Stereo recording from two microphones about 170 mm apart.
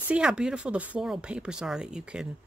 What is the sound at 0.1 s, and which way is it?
Speech, 5° right (ahead or behind).